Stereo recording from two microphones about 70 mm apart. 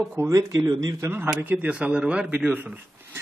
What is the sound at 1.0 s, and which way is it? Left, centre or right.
Speech, right.